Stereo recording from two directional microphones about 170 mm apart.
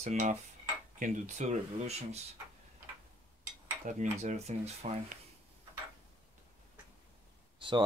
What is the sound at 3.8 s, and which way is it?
Speech, 45° right (ahead or behind).